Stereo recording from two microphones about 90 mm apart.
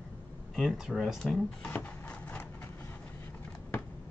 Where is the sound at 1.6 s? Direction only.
20° left (ahead or behind).